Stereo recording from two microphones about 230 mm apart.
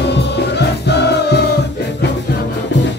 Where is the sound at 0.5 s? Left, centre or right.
Left.